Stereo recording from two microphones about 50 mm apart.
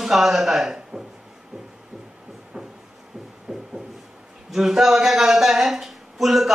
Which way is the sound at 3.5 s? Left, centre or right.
Right.